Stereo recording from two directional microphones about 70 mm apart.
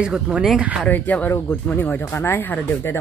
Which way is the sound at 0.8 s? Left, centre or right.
Left.